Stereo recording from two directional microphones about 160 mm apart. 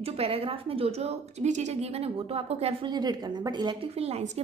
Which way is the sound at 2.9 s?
25° right (ahead or behind).